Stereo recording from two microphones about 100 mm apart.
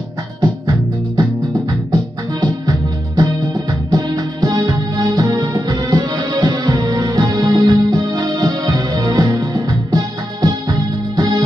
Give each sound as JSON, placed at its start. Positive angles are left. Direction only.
{"t": 0.4, "sound": "music", "side_deg": -40}
{"t": 3.9, "sound": "music", "side_deg": -40}